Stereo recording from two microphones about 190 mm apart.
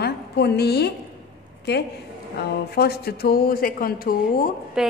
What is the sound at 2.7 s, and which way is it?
Speech, 55° left (ahead or behind).